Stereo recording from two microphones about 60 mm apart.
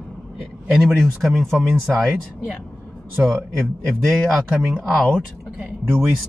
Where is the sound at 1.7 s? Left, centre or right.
Centre.